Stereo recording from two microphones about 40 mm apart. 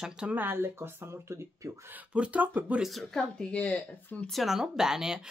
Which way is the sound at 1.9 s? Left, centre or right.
Right.